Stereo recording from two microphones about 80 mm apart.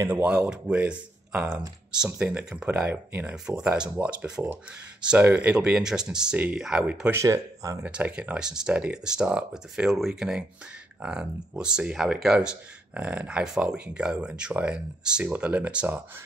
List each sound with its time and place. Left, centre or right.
0.1 s speech: centre
3.4 s speech: centre
7.2 s speech: right
7.8 s speech: centre